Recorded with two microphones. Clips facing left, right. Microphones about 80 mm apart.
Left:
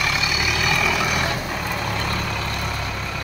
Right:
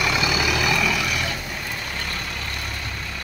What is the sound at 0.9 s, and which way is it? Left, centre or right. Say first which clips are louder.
Vehicle: left 3 dB; left.